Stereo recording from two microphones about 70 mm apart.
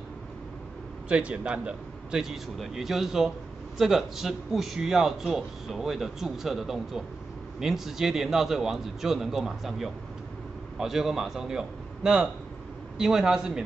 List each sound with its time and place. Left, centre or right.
1.0 s a man's voice: centre